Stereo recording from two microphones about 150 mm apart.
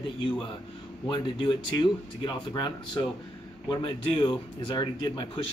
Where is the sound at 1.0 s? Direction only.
30° left (ahead or behind).